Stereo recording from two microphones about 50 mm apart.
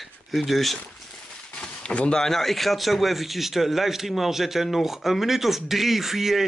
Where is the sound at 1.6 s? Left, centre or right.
Centre.